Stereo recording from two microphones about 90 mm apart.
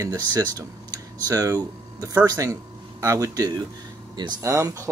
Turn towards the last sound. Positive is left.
turn(degrees=-35)  # may be behind; listen again after turning